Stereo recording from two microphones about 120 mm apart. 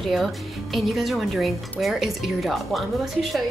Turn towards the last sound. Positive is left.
turn(degrees=0)  # may be behind; listen again after turning